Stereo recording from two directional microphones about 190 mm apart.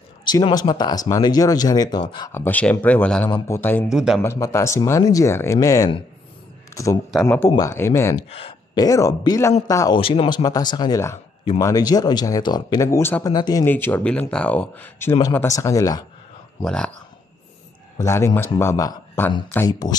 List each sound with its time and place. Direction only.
0.2 s speech: 25° left (ahead or behind)
2.3 s speech: 10° left (ahead or behind)
3.9 s speech: 5° right (ahead or behind)
4.2 s speech: 15° left (ahead or behind)
6.7 s a sound: 15° left (ahead or behind)
7.1 s speech: centre (ahead or behind)
7.3 s speech: 15° left (ahead or behind)
8.2 s speech: 30° left (ahead or behind)
9.9 s speech: 30° left (ahead or behind)
16.6 s speech: 5° left (ahead or behind)
17.9 s speech: 15° left (ahead or behind)